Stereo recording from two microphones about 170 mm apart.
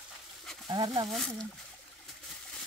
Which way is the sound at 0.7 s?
25° right (ahead or behind).